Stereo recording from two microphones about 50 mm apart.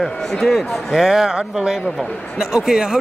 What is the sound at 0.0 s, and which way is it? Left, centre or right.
A man's voice, centre.